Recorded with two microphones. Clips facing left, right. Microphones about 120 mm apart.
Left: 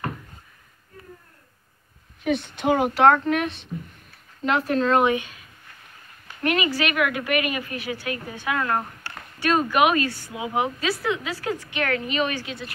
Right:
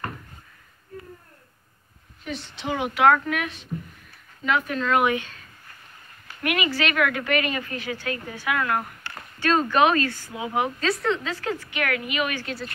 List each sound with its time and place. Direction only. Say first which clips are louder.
2.2 s a woman's voice: left 9 dB; 55° left (ahead or behind)
2.9 s speech: right 1 dB; 30° left (ahead or behind)
5.1 s a woman's voice: left 2 dB; 15° left (ahead or behind)
6.4 s a woman's voice: left 2 dB; 25° left (ahead or behind)
9.4 s a woman's voice: even; 15° left (ahead or behind)
10.9 s a woman's voice: right 1 dB; 5° left (ahead or behind)
11.8 s speech: left 2 dB; 30° left (ahead or behind)
12.4 s speech: right 2 dB; centre (ahead or behind)